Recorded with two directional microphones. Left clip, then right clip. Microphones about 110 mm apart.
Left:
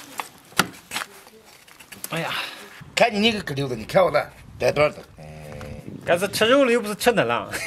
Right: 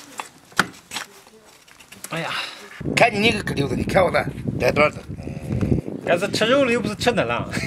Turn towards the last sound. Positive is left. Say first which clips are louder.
# left 1 dB
turn(degrees=20)  # may be behind; listen again after turning